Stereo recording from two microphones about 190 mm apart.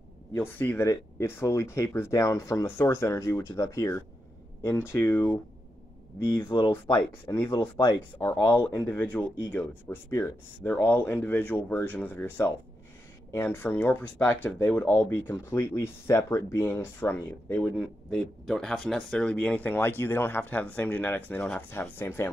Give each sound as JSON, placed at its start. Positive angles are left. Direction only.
{"t": 0.3, "sound": "speech", "side_deg": 10}
{"t": 6.3, "sound": "speech", "side_deg": 25}
{"t": 6.7, "sound": "speech", "side_deg": 10}